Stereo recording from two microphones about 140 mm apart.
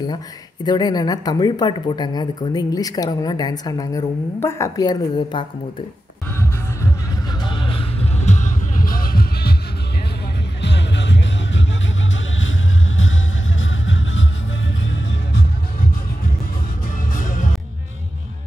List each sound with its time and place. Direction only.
0.7 s speech: 30° left (ahead or behind)
7.4 s music: 35° left (ahead or behind)
8.2 s music: 60° left (ahead or behind); by 9.3 s 90° left
17.1 s music: 70° left (ahead or behind)